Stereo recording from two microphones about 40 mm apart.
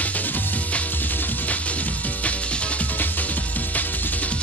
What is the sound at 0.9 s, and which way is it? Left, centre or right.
Music, left.